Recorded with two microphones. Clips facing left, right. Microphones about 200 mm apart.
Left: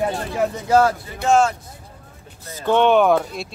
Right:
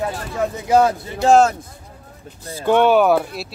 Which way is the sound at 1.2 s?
35° right (ahead or behind).